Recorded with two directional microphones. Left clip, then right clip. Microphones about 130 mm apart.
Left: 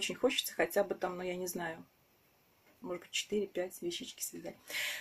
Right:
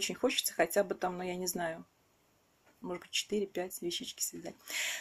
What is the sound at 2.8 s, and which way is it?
Speech, 20° right (ahead or behind).